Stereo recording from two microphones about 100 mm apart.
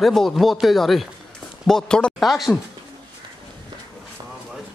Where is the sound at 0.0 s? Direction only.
Centre (ahead or behind).